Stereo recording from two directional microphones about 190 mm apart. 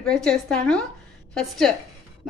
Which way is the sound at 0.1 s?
5° left (ahead or behind).